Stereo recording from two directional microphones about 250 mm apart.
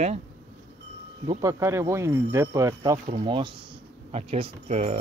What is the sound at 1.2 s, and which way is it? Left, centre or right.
Speech, centre.